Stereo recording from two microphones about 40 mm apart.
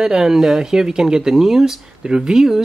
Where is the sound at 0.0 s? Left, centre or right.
Centre.